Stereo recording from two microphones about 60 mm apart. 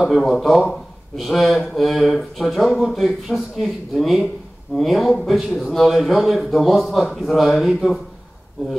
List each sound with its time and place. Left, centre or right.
0.0 s speech: centre